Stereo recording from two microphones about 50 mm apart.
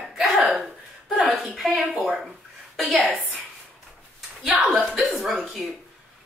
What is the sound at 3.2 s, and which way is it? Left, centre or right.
Speech, right.